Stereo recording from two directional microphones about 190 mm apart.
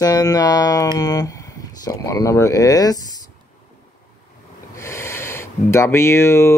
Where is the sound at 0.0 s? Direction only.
20° left (ahead or behind).